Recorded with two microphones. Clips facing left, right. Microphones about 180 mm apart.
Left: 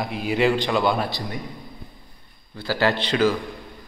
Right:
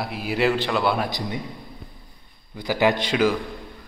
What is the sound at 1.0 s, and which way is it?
Speech, 20° right (ahead or behind).